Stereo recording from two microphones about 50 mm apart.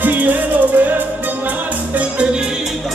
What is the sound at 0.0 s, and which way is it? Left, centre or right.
Music, right.